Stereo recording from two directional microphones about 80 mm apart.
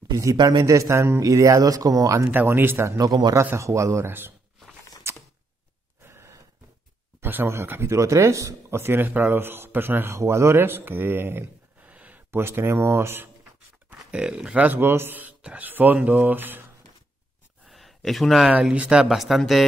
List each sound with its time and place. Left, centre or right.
0.1 s speech: right
0.4 s speech: right
0.7 s speech: right
2.3 s speech: right
3.0 s speech: right
3.5 s speech: right
5.1 s a sound: right
6.0 s gasp: right
7.2 s speech: right
13.8 s speech: centre
17.6 s a sound: centre
18.7 s speech: centre